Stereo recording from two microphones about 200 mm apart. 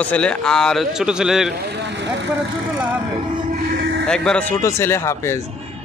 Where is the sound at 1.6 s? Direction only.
60° right (ahead or behind).